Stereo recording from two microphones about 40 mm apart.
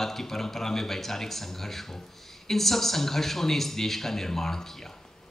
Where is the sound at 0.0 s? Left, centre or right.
Centre.